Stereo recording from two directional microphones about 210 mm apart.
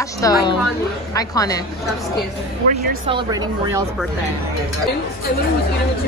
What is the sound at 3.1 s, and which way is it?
Speech, 20° right (ahead or behind).